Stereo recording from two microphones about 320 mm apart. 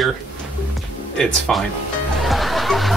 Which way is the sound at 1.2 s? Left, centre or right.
Centre.